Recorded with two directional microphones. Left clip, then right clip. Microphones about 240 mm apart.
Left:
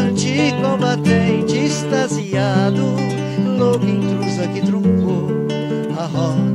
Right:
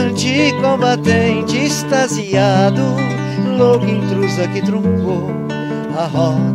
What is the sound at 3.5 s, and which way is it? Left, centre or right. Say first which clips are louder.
Speech: right 5 dB; right.